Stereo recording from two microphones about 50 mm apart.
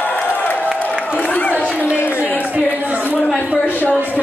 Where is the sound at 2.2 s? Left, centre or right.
Right.